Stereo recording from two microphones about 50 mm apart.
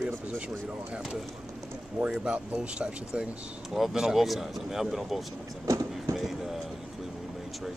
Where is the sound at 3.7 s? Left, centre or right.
Centre.